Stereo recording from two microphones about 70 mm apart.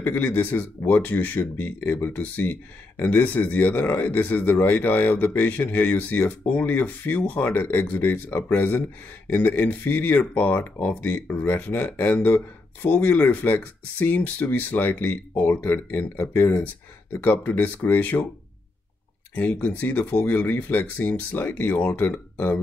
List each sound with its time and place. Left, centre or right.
0.0 s speech: left
19.3 s speech: left